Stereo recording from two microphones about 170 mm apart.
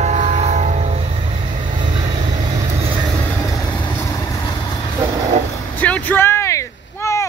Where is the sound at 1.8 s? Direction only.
30° right (ahead or behind).